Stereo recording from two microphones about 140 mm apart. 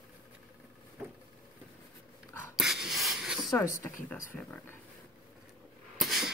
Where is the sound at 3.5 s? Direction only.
20° left (ahead or behind).